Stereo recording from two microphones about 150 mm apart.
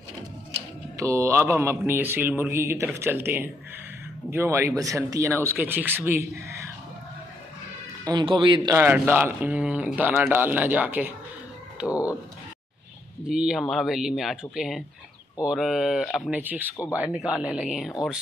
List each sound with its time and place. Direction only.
0.9 s a man's voice: 20° right (ahead or behind)
8.0 s speech: 30° right (ahead or behind)
8.7 s a man's voice: 15° right (ahead or behind)
13.2 s speech: 5° right (ahead or behind)
16.3 s a man's voice: 10° right (ahead or behind)